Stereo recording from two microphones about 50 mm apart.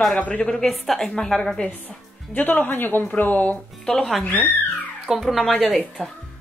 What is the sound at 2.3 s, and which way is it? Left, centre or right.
A woman's voice, left.